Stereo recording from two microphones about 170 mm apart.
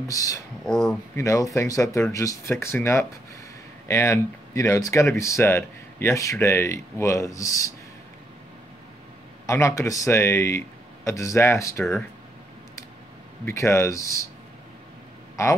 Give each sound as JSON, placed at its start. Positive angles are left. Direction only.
{"t": 0.1, "sound": "speech", "side_deg": 20}
{"t": 0.7, "sound": "speech", "side_deg": 0}
{"t": 1.1, "sound": "speech", "side_deg": 20}
{"t": 9.5, "sound": "speech", "side_deg": 15}
{"t": 13.5, "sound": "speech", "side_deg": 15}